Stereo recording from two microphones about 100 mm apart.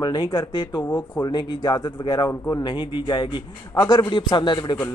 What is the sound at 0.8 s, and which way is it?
Speech, 25° left (ahead or behind).